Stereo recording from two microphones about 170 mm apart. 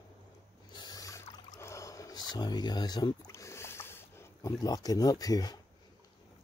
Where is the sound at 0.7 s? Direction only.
20° left (ahead or behind).